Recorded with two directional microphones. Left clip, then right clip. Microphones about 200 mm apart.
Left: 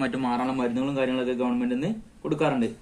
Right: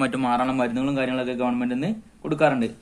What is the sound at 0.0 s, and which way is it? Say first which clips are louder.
A man's voice: right 4 dB; 45° right (ahead or behind).